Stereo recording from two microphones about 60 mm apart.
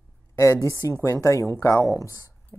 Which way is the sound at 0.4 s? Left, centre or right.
Left.